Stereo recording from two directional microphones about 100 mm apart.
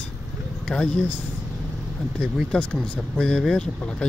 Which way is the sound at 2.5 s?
10° left (ahead or behind).